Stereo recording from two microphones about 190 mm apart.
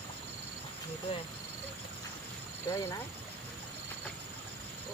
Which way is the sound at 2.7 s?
20° left (ahead or behind).